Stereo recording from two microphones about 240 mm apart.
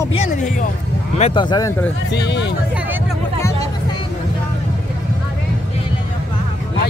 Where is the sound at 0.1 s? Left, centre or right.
Left.